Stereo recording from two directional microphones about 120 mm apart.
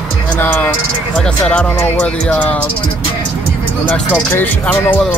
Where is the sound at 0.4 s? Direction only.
15° left (ahead or behind).